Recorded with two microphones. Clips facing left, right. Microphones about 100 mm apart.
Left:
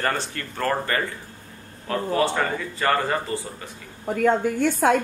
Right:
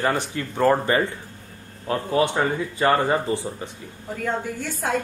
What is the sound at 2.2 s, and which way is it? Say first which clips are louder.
Speech: right 3 dB; 15° right (ahead or behind).